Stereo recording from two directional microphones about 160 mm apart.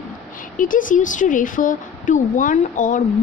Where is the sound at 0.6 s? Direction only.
55° left (ahead or behind).